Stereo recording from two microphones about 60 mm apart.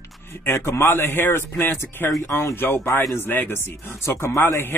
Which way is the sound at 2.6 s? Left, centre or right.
Left.